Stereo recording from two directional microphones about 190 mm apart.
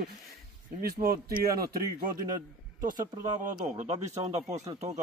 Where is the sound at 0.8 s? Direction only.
55° right (ahead or behind).